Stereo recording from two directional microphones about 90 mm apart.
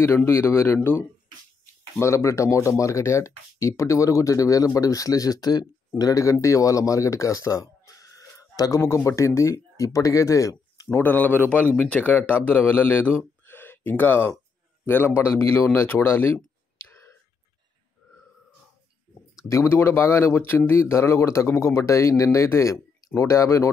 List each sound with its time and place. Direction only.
0.0 s speech: 30° left (ahead or behind)
10.9 s speech: 20° left (ahead or behind)
16.7 s whispering: 25° left (ahead or behind)
19.4 s speech: 35° left (ahead or behind)